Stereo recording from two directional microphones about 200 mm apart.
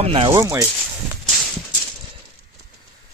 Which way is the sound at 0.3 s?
15° right (ahead or behind).